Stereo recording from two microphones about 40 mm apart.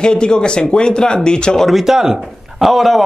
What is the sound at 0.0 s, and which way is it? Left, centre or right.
Speech, left.